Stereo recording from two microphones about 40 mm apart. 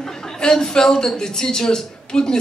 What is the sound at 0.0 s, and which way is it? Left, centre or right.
A man's voice, centre.